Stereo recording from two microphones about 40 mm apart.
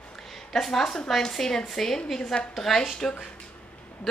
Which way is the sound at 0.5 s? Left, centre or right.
Centre.